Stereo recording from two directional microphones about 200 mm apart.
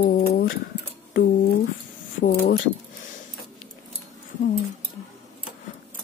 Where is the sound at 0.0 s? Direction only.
50° left (ahead or behind).